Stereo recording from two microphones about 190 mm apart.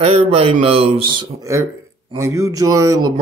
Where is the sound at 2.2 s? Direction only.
15° right (ahead or behind).